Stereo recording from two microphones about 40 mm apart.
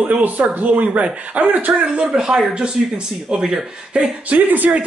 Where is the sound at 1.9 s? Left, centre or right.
Centre.